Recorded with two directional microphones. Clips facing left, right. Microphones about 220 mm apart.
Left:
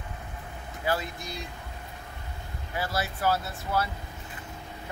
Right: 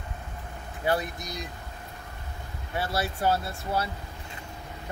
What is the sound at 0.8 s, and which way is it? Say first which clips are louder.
Speech: right 2 dB; 15° right (ahead or behind).